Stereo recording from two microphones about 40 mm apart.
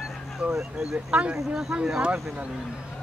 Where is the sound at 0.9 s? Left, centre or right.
Right.